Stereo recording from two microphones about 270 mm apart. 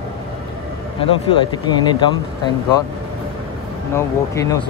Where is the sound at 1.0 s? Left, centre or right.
Centre.